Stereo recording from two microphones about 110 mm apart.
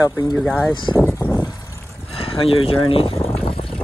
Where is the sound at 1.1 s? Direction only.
20° left (ahead or behind).